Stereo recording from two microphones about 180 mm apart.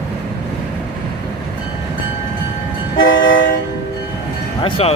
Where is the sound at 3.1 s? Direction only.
90° left.